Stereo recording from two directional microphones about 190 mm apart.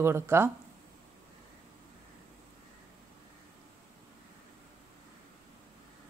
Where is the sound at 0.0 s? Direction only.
15° right (ahead or behind).